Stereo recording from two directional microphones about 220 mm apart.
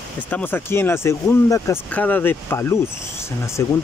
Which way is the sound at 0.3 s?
10° left (ahead or behind).